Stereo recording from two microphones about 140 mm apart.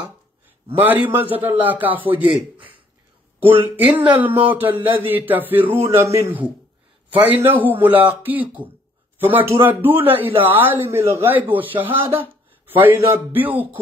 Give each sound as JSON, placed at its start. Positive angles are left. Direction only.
{"t": 0.7, "sound": "a man's voice", "side_deg": -10}
{"t": 3.3, "sound": "a man's voice", "side_deg": -15}
{"t": 7.6, "sound": "a man's voice", "side_deg": -15}